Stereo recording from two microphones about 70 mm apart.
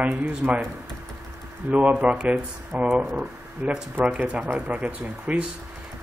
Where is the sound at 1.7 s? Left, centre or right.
Right.